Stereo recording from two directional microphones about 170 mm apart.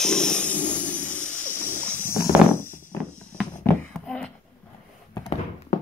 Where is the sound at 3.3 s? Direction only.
5° left (ahead or behind).